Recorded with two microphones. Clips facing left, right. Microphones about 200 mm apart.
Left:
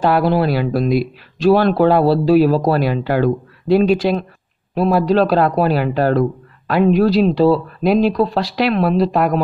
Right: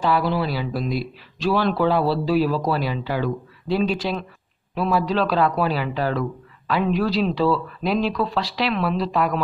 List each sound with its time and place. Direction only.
0.0 s speech: 60° left (ahead or behind)
4.7 s speech: 45° left (ahead or behind)